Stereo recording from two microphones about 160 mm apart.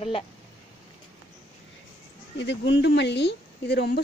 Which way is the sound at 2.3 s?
90° left.